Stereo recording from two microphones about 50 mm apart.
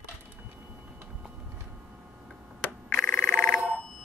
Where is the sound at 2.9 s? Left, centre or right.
Left.